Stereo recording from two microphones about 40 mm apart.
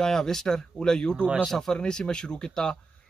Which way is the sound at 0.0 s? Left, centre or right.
Centre.